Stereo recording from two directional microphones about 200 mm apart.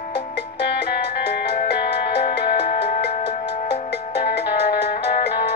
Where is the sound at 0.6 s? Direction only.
55° left (ahead or behind).